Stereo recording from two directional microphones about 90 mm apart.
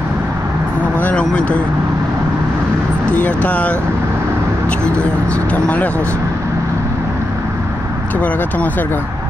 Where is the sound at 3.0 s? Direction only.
15° left (ahead or behind).